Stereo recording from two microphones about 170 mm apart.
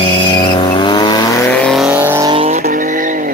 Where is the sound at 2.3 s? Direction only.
35° right (ahead or behind).